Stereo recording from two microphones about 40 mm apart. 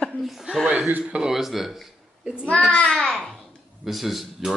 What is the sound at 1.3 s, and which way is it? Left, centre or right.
Speech, centre.